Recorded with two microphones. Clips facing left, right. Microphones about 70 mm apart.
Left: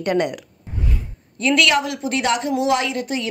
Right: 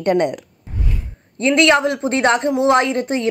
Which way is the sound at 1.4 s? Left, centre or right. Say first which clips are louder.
Right 4 dB; right.